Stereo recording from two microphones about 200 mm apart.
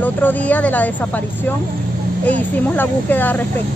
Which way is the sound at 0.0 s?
10° left (ahead or behind).